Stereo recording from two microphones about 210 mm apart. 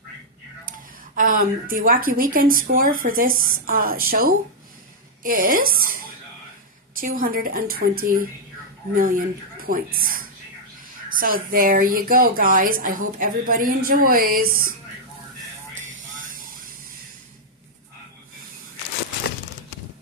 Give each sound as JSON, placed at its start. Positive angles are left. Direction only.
{"t": 0.7, "sound": "a woman's voice", "side_deg": -40}
{"t": 15.8, "sound": "music", "side_deg": -40}